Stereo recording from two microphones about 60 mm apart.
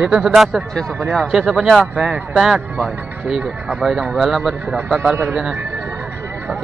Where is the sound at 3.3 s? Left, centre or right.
Centre.